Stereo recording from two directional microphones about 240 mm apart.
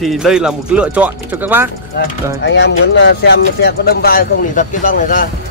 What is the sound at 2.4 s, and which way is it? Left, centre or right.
Speech, left.